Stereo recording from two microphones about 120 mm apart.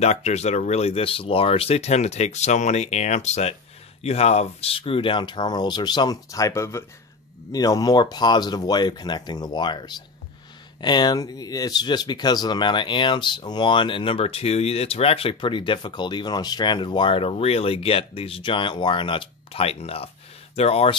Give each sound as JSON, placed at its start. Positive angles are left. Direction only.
{"t": 0.0, "sound": "speech", "side_deg": 65}